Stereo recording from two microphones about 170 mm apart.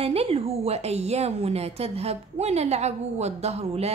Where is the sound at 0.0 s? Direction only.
35° right (ahead or behind).